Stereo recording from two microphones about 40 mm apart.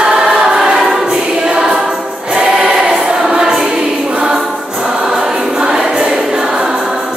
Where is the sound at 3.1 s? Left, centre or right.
Centre.